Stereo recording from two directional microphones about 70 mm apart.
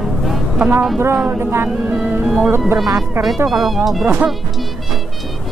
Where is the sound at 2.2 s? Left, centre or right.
Centre.